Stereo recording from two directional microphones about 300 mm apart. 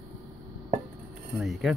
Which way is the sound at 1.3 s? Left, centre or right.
Centre.